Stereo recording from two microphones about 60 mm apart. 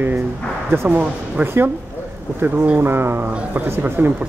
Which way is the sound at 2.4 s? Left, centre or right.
Right.